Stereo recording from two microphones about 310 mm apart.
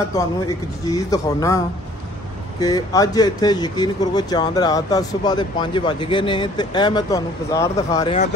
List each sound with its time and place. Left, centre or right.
0.1 s speech: centre
2.6 s speech: centre